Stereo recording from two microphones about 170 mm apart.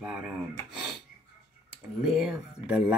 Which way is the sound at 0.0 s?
5° right (ahead or behind).